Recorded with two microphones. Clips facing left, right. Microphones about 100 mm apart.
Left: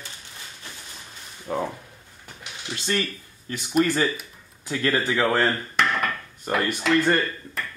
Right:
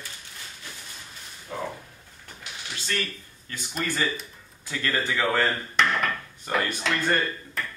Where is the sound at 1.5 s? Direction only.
50° left (ahead or behind).